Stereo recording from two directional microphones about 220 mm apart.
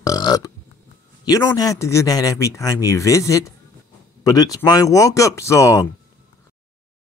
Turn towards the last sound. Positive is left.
turn(degrees=15)  # may be behind; listen again after turning